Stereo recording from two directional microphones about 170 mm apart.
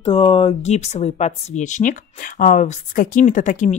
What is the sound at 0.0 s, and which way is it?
Speech, 30° left (ahead or behind).